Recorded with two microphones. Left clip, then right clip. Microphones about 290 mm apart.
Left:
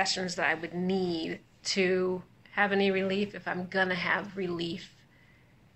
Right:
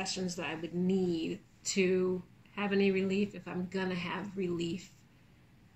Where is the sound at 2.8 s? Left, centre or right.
Centre.